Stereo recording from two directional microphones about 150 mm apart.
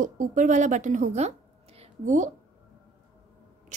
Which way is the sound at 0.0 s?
60° right (ahead or behind).